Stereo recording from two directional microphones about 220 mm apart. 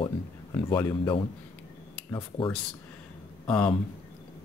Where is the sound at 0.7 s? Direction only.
15° left (ahead or behind).